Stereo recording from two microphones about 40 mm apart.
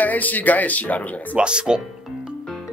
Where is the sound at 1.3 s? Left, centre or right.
Right.